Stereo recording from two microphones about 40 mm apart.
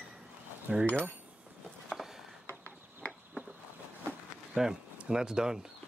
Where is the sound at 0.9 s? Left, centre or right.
Left.